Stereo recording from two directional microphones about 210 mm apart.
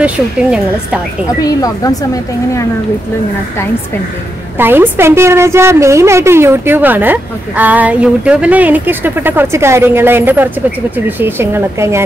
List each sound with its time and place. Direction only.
0.0 s a woman's voice: 5° right (ahead or behind)
1.4 s speech: 15° left (ahead or behind)
4.6 s a woman's voice: 10° right (ahead or behind)